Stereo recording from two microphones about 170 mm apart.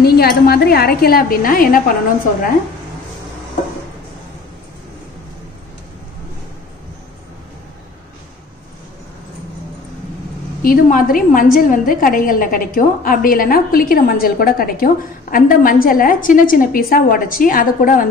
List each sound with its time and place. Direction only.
0.0 s a woman's voice: 65° left (ahead or behind)
10.6 s a woman's voice: 55° left (ahead or behind)